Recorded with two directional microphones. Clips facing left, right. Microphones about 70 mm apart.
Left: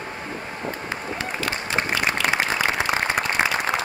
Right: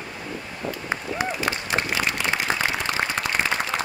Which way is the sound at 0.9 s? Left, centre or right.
Right.